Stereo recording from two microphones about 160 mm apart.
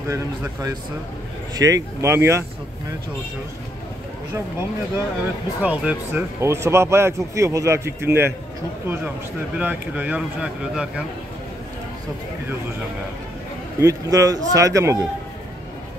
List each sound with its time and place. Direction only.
0.1 s a man's voice: 20° right (ahead or behind)
4.3 s a man's voice: 15° right (ahead or behind)
13.7 s speech: 20° right (ahead or behind)